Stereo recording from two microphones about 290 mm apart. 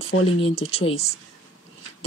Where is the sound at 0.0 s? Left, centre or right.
Left.